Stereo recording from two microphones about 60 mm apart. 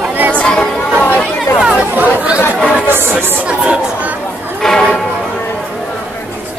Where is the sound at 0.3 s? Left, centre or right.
Centre.